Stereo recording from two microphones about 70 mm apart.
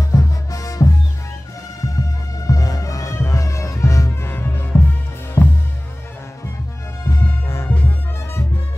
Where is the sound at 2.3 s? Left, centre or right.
Left.